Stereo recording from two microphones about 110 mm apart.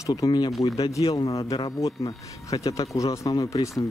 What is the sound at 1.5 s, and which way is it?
Speech, 60° left (ahead or behind).